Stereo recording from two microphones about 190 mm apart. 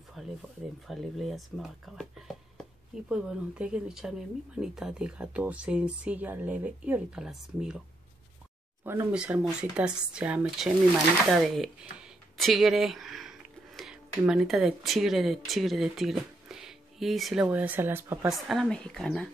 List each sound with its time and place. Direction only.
0.2 s a sound: centre (ahead or behind)
0.8 s speech: centre (ahead or behind)
8.8 s speech: 10° right (ahead or behind)
18.5 s speech: centre (ahead or behind)